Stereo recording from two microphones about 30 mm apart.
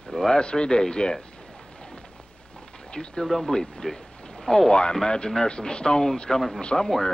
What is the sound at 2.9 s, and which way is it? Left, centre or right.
Speech, left.